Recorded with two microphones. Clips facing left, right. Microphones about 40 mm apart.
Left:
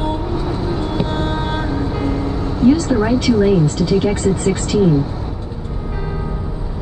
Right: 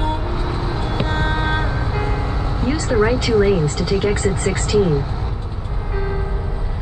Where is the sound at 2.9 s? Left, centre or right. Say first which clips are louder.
Left 1 dB; centre.